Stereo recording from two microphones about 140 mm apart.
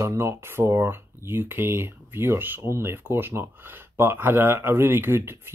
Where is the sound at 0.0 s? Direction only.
20° right (ahead or behind).